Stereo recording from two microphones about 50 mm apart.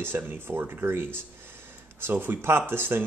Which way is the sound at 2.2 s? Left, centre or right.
Right.